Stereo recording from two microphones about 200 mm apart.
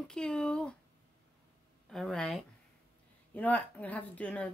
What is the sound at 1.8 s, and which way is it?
Speech, centre (ahead or behind).